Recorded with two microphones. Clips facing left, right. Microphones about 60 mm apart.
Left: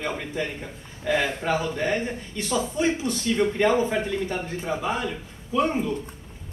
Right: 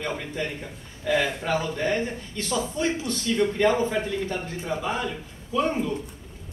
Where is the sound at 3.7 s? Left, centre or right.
Centre.